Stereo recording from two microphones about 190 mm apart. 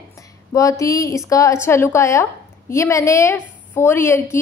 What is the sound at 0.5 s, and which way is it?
A woman's voice, 15° left (ahead or behind).